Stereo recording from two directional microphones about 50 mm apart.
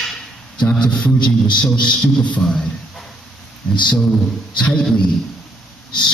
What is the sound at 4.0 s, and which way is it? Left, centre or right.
A man's voice, centre.